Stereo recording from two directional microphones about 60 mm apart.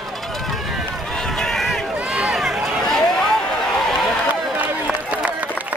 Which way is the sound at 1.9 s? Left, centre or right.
Centre.